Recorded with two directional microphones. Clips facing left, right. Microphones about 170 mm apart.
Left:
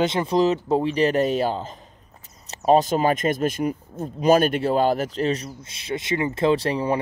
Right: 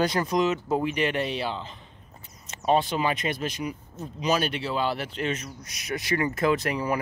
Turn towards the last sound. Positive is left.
turn(degrees=30)  # may be behind; listen again after turning